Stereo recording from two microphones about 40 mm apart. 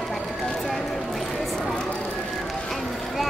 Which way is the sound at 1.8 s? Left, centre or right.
Left.